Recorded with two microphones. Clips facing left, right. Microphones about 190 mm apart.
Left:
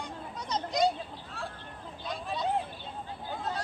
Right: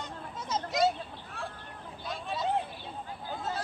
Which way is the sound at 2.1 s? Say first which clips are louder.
Even; centre (ahead or behind).